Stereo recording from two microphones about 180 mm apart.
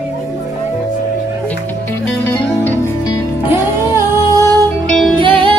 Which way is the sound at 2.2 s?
10° left (ahead or behind).